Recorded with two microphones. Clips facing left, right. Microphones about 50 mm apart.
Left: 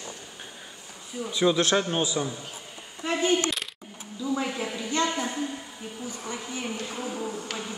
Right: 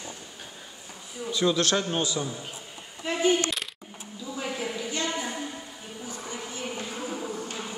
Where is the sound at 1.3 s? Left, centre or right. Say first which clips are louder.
Left 2 dB; centre.